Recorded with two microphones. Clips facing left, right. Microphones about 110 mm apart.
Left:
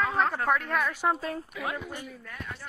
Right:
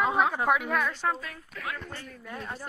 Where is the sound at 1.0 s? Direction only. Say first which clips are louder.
Left 3 dB; 15° left (ahead or behind).